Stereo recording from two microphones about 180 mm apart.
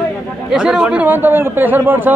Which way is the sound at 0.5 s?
5° right (ahead or behind).